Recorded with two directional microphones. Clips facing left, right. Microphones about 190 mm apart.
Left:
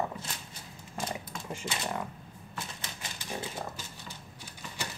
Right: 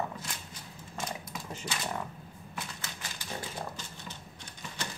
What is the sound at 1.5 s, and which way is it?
Speech, 10° left (ahead or behind).